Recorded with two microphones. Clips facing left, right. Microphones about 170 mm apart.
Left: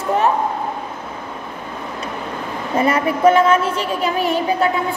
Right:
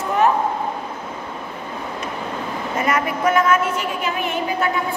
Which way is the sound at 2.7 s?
30° left (ahead or behind).